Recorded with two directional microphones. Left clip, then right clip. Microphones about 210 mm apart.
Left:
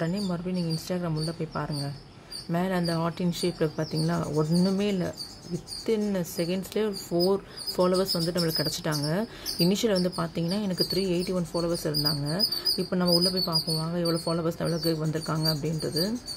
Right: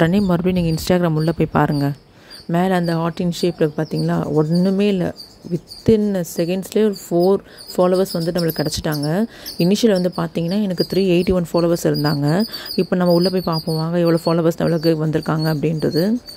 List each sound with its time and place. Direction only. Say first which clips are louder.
0.0 s speech: right 14 dB; 40° right (ahead or behind)
2.5 s speech: right 10 dB; 30° right (ahead or behind)